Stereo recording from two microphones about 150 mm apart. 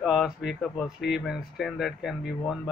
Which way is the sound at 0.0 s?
Centre (ahead or behind).